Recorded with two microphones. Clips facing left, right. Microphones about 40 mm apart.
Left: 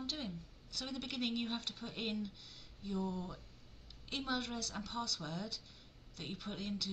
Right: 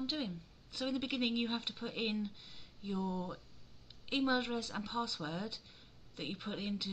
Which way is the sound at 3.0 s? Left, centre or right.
Centre.